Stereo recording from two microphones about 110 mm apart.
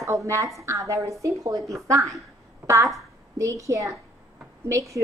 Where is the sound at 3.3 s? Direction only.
30° right (ahead or behind).